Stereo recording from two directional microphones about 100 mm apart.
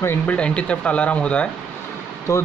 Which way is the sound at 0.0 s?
25° left (ahead or behind).